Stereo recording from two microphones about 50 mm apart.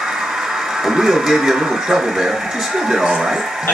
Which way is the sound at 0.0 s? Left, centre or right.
Centre.